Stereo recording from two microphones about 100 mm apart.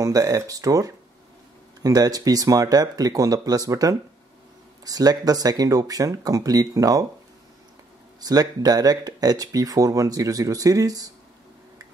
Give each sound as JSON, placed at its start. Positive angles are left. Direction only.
{"t": 0.0, "sound": "speech", "side_deg": -35}
{"t": 8.2, "sound": "speech", "side_deg": -40}